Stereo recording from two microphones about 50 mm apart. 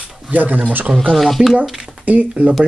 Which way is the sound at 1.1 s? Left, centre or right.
Centre.